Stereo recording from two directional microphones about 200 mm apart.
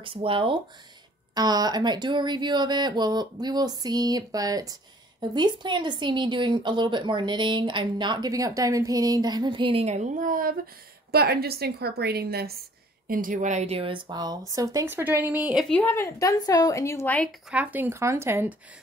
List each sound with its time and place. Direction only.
0.0 s a woman's voice: 25° right (ahead or behind); by 15.6 s 5° right (ahead or behind)
15.7 s a woman's voice: 10° left (ahead or behind)
17.5 s speech: 5° right (ahead or behind)